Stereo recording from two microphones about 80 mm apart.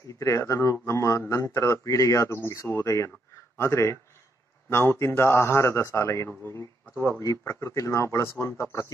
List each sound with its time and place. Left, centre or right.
0.2 s a man's voice: left